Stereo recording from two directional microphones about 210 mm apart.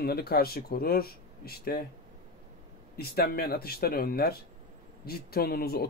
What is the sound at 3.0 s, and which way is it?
Speech, 45° left (ahead or behind).